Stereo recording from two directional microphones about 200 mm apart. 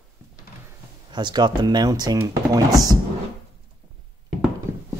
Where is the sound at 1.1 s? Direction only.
20° right (ahead or behind).